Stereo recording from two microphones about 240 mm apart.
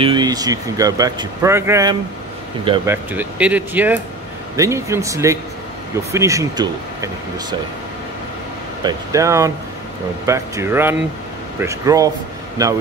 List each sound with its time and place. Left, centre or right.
0.0 s speech: centre
8.8 s speech: centre